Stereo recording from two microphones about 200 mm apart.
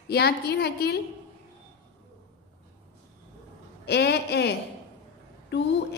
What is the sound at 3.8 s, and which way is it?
A woman's voice, 55° left (ahead or behind).